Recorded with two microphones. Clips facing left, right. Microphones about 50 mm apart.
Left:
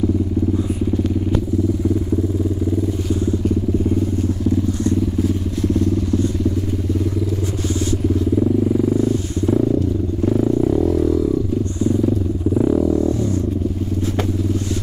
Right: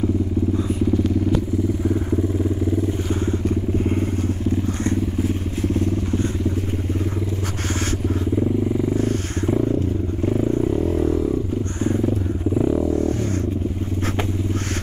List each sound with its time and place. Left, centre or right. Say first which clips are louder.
3.3 s vehicle: left 3 dB; right
8.9 s vehicle: left 4 dB; right
9.5 s vehicle: left 3 dB; right
10.6 s vehicle: left 4 dB; centre
10.9 s a sound: left 3 dB; right
11.8 s vehicle: left 3 dB; right
12.5 s vehicle: left 4 dB; centre